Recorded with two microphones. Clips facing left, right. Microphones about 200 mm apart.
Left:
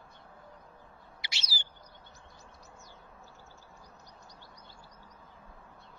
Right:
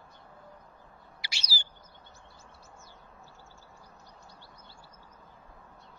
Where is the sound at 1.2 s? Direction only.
20° left (ahead or behind).